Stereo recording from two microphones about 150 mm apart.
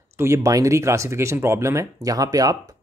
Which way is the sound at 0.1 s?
20° right (ahead or behind).